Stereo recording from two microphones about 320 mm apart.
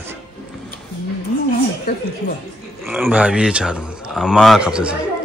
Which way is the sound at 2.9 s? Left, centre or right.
Centre.